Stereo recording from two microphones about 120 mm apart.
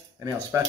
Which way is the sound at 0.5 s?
25° right (ahead or behind).